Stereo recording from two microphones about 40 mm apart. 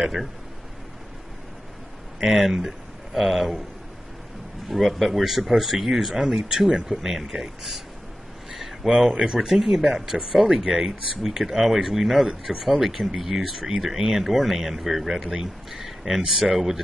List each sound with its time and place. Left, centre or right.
2.1 s speech: centre
3.3 s speech: centre
4.6 s speech: centre
8.5 s a sound: centre
9.1 s speech: centre